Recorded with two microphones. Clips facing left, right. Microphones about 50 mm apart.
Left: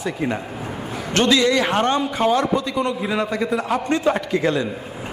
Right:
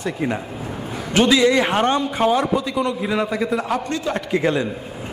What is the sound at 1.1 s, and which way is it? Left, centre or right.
A man's voice, centre.